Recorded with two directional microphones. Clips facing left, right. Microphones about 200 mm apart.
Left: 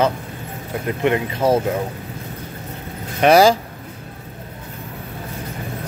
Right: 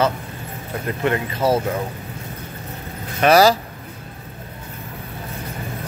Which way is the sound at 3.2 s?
15° left (ahead or behind).